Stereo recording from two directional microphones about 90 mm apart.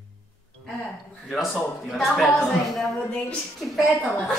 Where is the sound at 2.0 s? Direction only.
Centre (ahead or behind).